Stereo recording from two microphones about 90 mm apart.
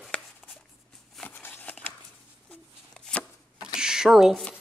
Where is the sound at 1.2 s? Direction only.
20° left (ahead or behind).